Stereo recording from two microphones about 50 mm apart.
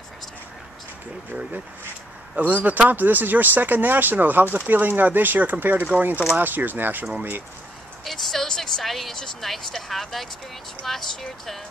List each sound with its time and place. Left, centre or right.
2.3 s speech: right
8.0 s speech: centre